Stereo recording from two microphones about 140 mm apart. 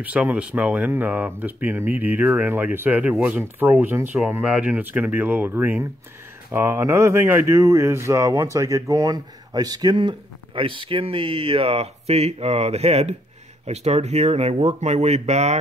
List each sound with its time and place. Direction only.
0.0 s speech: 10° right (ahead or behind); by 15.5 s 50° right (ahead or behind)